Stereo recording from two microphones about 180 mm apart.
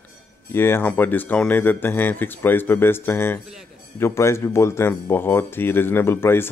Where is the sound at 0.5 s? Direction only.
10° left (ahead or behind).